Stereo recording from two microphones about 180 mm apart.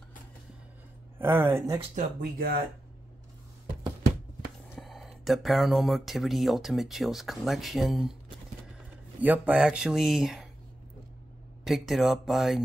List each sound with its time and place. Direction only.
1.1 s speech: 15° right (ahead or behind)
2.3 s speech: 55° right (ahead or behind)
4.7 s speech: centre (ahead or behind)
9.2 s speech: 10° right (ahead or behind)
11.6 s speech: centre (ahead or behind)